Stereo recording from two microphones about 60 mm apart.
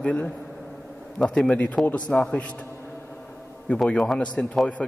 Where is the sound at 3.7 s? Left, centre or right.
Left.